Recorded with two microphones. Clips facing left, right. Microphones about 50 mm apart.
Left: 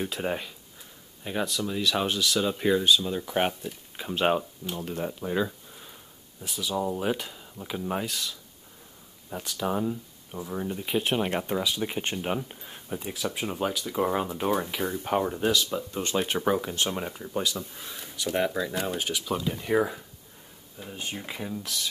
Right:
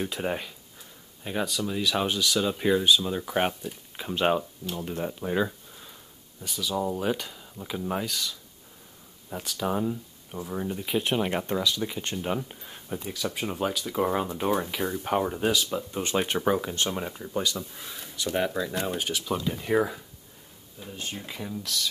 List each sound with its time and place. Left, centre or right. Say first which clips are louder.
0.0 s speech: even; centre
6.4 s speech: even; centre
11.8 s speech: left 1 dB; left
12.4 s speech: even; centre
16.0 s speech: right 1 dB; centre
16.3 s speech: even; centre
20.8 s speech: left 1 dB; centre